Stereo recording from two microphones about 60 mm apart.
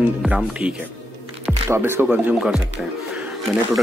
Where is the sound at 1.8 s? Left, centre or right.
Right.